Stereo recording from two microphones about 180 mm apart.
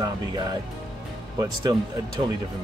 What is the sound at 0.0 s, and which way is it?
Speech, 20° right (ahead or behind).